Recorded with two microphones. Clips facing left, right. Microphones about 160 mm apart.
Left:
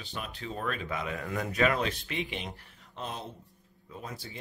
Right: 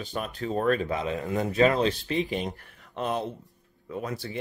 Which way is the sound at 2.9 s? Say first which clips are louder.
Right 10 dB; 65° right (ahead or behind).